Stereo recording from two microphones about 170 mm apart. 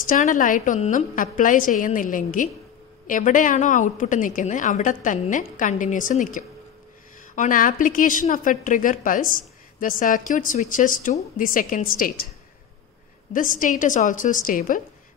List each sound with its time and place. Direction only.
0.0 s a woman's voice: 50° left (ahead or behind)
13.3 s a woman's voice: 50° left (ahead or behind)